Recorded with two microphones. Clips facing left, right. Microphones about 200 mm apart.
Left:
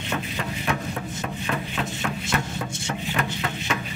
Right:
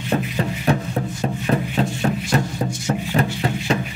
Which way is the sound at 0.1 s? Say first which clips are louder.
Right 8 dB; 35° right (ahead or behind).